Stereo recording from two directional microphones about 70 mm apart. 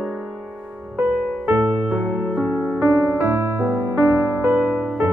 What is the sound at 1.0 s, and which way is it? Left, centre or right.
Music, right.